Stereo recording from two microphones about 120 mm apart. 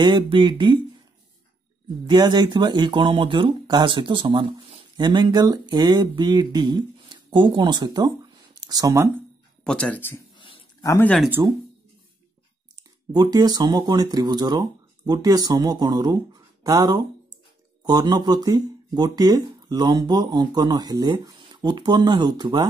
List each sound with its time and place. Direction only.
0.0 s speech: 40° right (ahead or behind)
2.0 s speech: 35° right (ahead or behind)
9.7 s speech: 10° left (ahead or behind)
10.3 s a sound: 45° left (ahead or behind)
10.8 s speech: 25° left (ahead or behind)
11.4 s speech: 25° right (ahead or behind)
12.7 s speech: 35° right (ahead or behind)